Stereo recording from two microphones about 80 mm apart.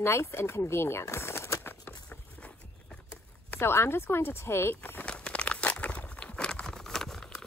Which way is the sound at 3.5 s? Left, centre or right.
Left.